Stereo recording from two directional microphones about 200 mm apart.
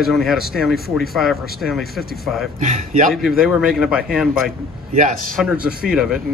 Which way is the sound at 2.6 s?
35° right (ahead or behind).